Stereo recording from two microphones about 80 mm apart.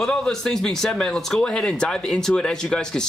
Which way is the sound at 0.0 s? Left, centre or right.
Centre.